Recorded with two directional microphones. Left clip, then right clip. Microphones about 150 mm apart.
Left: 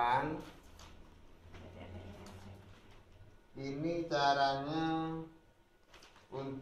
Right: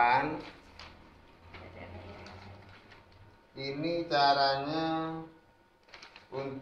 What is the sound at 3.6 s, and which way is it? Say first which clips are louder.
Mantra: right 5 dB; 15° right (ahead or behind).